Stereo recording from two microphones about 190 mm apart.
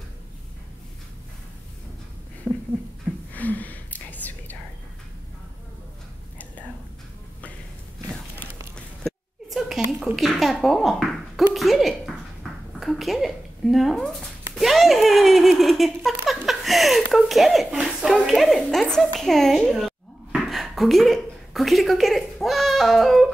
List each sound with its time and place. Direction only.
2.4 s speech: 5° left (ahead or behind)
3.3 s whispering: 10° left (ahead or behind)
8.7 s a sound: centre (ahead or behind)
12.8 s a woman's voice: centre (ahead or behind)